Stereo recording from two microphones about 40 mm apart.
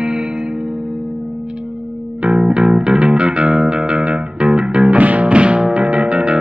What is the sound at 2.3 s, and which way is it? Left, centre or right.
Music, right.